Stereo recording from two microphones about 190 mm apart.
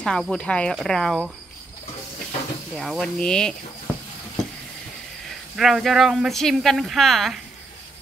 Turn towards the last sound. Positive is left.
turn(degrees=0)  # may be behind; listen again after turning